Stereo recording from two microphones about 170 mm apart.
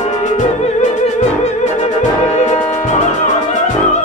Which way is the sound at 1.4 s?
40° left (ahead or behind).